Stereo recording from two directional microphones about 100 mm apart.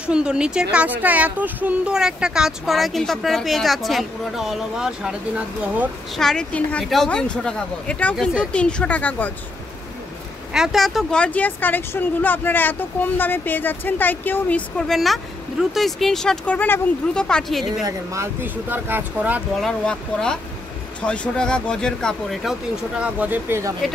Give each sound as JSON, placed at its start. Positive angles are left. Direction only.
{"t": 0.0, "sound": "speech", "side_deg": -10}
{"t": 6.1, "sound": "speech", "side_deg": 5}
{"t": 10.5, "sound": "speech", "side_deg": -5}
{"t": 11.1, "sound": "speech", "side_deg": 15}
{"t": 14.8, "sound": "speech", "side_deg": 0}
{"t": 16.5, "sound": "speech", "side_deg": 20}
{"t": 17.1, "sound": "speech", "side_deg": 10}
{"t": 17.8, "sound": "speech", "side_deg": -30}
{"t": 18.4, "sound": "speech", "side_deg": -20}
{"t": 19.6, "sound": "speech", "side_deg": 5}
{"t": 23.0, "sound": "speech", "side_deg": -15}